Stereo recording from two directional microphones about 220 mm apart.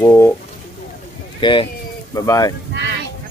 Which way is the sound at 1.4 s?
20° left (ahead or behind).